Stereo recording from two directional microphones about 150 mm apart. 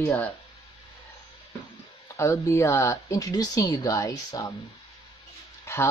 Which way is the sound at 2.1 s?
20° left (ahead or behind).